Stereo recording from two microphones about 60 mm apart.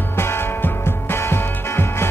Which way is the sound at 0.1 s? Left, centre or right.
Left.